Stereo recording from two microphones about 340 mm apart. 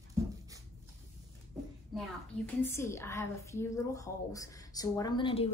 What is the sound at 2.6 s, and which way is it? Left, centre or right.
A woman's voice, centre.